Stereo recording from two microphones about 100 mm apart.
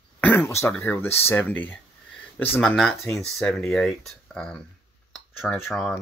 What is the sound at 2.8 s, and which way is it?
Speech, 5° left (ahead or behind).